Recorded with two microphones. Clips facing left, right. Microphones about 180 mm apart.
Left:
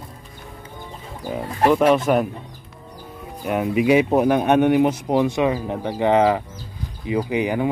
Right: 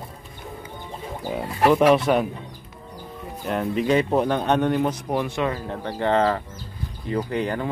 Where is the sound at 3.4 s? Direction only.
5° left (ahead or behind).